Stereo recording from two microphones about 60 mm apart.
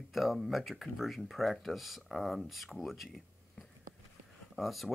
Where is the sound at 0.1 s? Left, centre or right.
Centre.